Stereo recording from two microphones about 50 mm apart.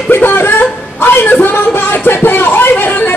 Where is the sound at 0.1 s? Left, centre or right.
Left.